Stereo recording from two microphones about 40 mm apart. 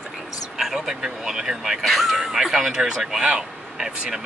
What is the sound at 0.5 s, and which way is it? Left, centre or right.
Speech, centre.